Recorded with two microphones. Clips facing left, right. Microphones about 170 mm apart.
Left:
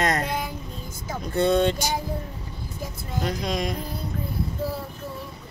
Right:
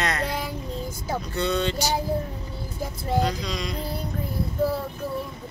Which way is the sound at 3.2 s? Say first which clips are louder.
Left 1 dB; 55° left (ahead or behind).